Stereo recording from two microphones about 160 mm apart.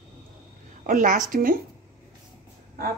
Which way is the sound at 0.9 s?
55° right (ahead or behind).